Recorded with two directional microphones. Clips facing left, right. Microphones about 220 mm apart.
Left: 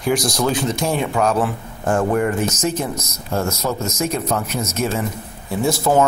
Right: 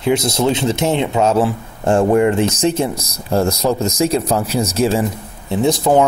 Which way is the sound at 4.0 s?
30° right (ahead or behind).